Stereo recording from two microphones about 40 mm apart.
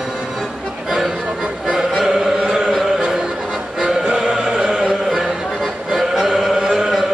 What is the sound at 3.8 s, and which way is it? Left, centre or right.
Choir, centre.